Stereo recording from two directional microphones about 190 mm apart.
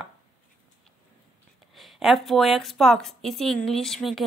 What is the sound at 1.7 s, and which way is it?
Speech, centre (ahead or behind).